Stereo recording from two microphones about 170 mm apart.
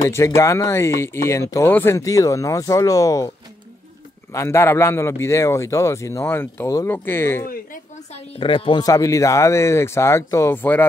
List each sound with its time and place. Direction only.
0.0 s speech: 15° left (ahead or behind)
4.3 s speech: 15° left (ahead or behind)
8.1 s speech: 35° left (ahead or behind); by 10.9 s 10° left (ahead or behind)